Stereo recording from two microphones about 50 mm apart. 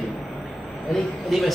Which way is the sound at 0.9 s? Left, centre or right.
Centre.